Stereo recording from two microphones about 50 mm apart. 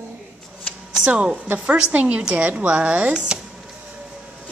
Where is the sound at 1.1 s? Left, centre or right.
Right.